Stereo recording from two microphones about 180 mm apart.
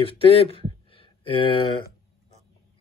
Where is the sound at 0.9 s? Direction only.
30° left (ahead or behind).